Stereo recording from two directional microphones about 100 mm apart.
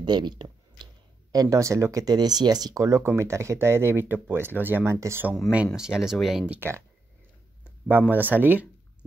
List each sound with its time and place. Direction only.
0.0 s a sound: 45° right (ahead or behind)
1.3 s speech: 35° right (ahead or behind)
5.8 s speech: 5° right (ahead or behind)
6.5 s speech: 25° right (ahead or behind)
7.9 s speech: 20° right (ahead or behind)